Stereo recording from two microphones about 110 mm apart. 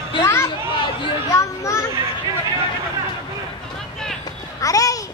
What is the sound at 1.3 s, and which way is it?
Children playing, 30° left (ahead or behind).